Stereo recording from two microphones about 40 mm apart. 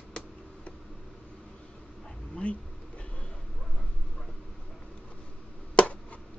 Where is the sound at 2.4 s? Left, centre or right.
Left.